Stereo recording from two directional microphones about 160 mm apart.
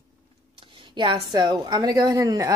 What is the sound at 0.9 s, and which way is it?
A woman's voice, 30° right (ahead or behind).